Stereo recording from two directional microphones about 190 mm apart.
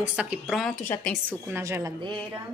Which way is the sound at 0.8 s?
10° left (ahead or behind).